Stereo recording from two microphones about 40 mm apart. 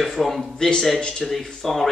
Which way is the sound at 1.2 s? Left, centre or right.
Centre.